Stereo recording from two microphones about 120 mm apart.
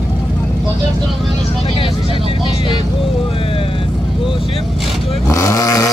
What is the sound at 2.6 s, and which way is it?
Speech, 45° left (ahead or behind).